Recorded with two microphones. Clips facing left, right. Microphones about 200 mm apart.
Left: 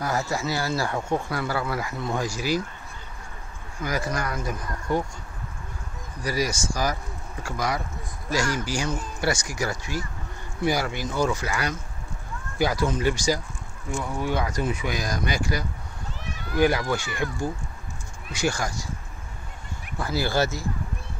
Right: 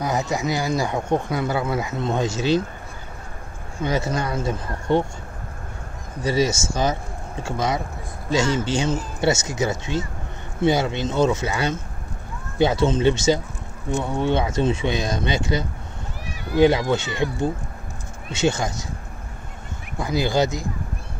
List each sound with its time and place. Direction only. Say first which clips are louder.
0.0 s speech: right 3 dB; 20° right (ahead or behind)
3.7 s speech: right 5 dB; 25° right (ahead or behind)
6.2 s speech: right 6 dB; 25° right (ahead or behind)
20.0 s speech: right 4 dB; 20° right (ahead or behind)